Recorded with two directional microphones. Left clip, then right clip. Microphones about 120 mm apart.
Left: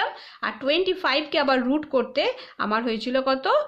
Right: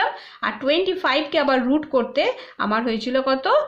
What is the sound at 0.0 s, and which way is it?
A woman's voice, 25° left (ahead or behind).